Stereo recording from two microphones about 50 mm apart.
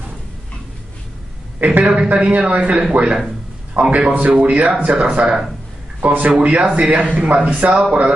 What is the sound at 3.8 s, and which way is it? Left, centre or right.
Speech, right.